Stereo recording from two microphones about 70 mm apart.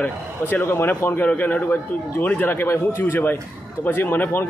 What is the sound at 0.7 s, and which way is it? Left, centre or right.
A man's voice, left.